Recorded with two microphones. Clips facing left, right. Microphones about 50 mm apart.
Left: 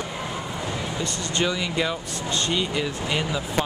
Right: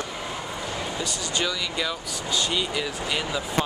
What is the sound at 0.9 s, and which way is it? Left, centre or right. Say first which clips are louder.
Speech: left 3 dB; centre.